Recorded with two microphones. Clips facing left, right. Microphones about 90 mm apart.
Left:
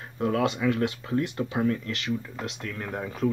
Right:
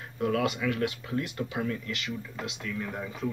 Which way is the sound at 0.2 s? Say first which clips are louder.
Left 3 dB; 30° left (ahead or behind).